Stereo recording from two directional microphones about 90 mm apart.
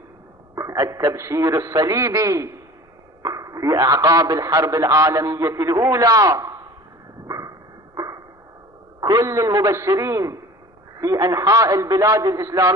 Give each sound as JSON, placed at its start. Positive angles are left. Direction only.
{"t": 0.6, "sound": "a man's voice", "side_deg": -40}
{"t": 7.2, "sound": "a sound", "side_deg": -40}
{"t": 9.0, "sound": "a man's voice", "side_deg": -40}